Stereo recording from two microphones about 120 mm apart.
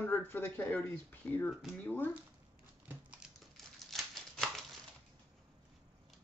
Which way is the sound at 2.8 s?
10° right (ahead or behind).